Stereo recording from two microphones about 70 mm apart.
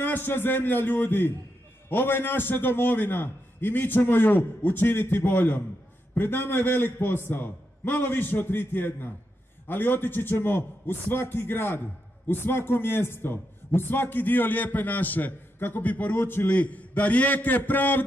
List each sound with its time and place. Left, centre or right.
0.0 s a man's voice: left